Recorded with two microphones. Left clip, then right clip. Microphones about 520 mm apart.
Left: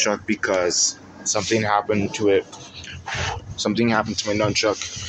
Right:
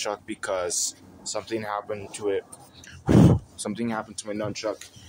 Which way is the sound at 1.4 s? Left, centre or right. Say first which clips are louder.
Left 10 dB; right.